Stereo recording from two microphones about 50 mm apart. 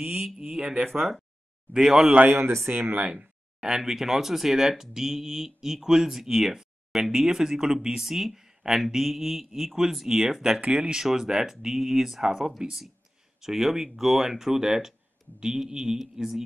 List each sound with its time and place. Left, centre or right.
0.4 s speech: centre
2.3 s speech: right
2.7 s speech: right
3.6 s speech: centre
10.6 s speech: right
10.9 s speech: centre